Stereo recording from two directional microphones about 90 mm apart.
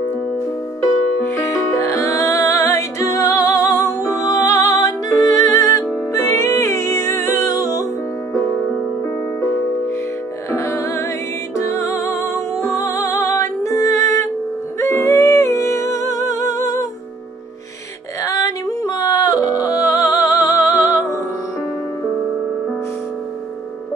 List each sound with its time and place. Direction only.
1.2 s music: 30° left (ahead or behind)
14.8 s humming: 30° left (ahead or behind)
18.2 s yodeling: 35° left (ahead or behind)